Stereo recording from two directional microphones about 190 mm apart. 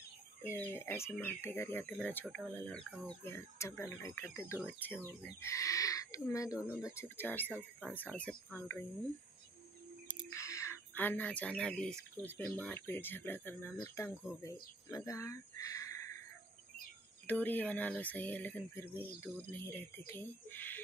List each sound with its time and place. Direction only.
0.4 s speech: 10° left (ahead or behind)
10.3 s speech: 15° left (ahead or behind)
17.3 s speech: 10° left (ahead or behind)